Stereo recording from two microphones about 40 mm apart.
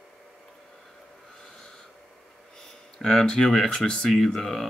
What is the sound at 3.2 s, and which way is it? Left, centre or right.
Speech, centre.